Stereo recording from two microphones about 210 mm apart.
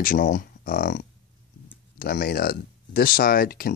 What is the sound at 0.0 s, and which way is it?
Speech, 40° left (ahead or behind).